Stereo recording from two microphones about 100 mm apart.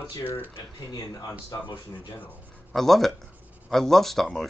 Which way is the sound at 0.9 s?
30° left (ahead or behind).